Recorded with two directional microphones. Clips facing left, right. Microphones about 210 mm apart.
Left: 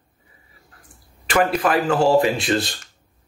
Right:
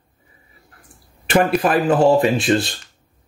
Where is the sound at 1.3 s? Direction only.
25° right (ahead or behind).